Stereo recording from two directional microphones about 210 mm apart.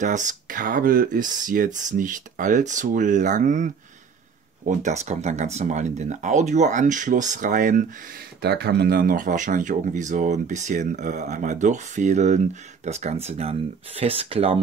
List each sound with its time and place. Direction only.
0.0 s speech: 35° right (ahead or behind)
8.4 s speech: 50° right (ahead or behind); by 14.6 s 25° right (ahead or behind)